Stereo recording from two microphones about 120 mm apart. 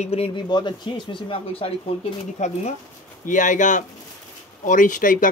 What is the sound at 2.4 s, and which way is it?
Speech, 75° left (ahead or behind).